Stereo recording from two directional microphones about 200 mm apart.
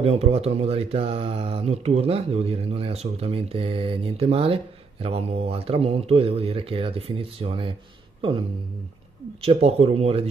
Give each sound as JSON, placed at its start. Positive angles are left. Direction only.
{"t": 0.0, "sound": "speech", "side_deg": -30}
{"t": 8.2, "sound": "a sound", "side_deg": -25}
{"t": 9.4, "sound": "speech", "side_deg": -30}